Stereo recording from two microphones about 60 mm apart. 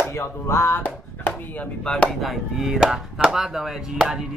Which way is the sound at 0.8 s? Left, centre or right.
Left.